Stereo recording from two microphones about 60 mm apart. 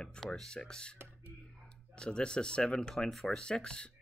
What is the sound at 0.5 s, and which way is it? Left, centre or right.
Speech, centre.